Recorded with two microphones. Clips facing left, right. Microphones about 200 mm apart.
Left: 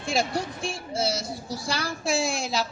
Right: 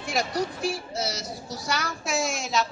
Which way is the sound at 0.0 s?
30° left (ahead or behind).